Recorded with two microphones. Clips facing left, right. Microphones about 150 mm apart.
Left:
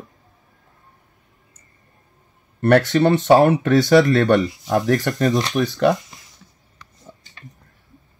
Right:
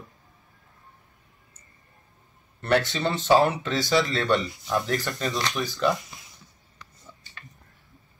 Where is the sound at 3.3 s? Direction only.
45° left (ahead or behind).